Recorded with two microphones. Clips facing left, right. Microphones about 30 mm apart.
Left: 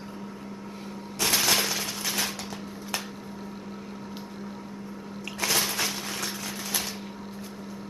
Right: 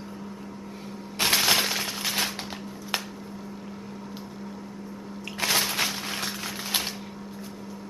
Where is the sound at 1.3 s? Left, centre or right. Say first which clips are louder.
Right 2 dB; centre.